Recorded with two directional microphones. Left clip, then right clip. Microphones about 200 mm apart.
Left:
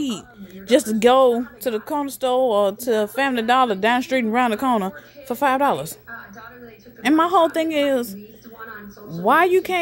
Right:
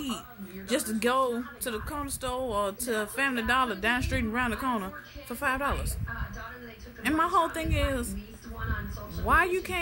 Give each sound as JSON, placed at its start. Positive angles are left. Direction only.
{"t": 0.7, "sound": "speech", "side_deg": 40}
{"t": 7.0, "sound": "speech", "side_deg": 35}
{"t": 9.2, "sound": "speech", "side_deg": 40}